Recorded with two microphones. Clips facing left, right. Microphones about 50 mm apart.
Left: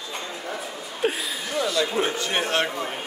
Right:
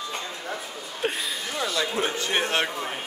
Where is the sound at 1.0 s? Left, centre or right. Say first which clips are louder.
Left 3 dB; centre.